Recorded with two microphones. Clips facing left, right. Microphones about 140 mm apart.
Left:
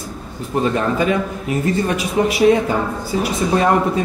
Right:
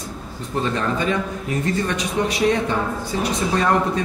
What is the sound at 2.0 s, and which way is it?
A man's voice, 5° left (ahead or behind).